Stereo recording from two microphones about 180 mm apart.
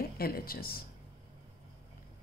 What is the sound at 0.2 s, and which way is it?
Speech, 55° left (ahead or behind).